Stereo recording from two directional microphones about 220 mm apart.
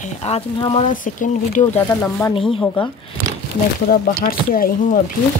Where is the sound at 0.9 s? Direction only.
35° left (ahead or behind).